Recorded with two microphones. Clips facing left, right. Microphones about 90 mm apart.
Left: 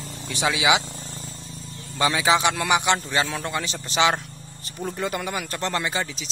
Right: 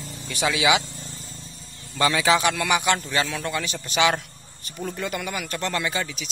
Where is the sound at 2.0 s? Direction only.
20° left (ahead or behind).